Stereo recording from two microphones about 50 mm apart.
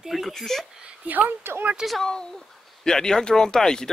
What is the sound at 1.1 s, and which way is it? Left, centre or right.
Speech, right.